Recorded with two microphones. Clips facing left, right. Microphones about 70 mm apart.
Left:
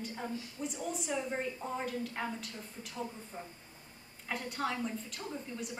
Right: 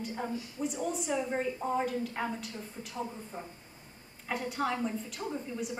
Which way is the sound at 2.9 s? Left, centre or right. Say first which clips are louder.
Right 3 dB; centre.